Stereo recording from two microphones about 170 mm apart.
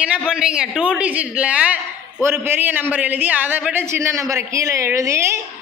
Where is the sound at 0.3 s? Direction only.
5° right (ahead or behind).